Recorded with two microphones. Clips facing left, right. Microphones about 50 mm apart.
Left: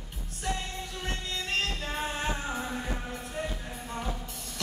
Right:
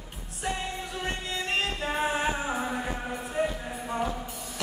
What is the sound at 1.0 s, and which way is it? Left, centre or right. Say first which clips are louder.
Music: right 3 dB; centre.